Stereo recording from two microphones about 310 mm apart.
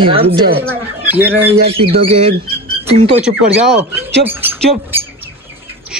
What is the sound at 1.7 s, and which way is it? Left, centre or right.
Speech, centre.